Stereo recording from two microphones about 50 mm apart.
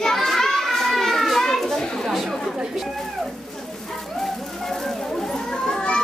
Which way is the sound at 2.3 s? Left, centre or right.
Centre.